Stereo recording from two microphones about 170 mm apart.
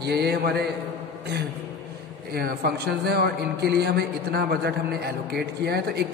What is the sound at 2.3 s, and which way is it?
A man's voice, 65° right (ahead or behind).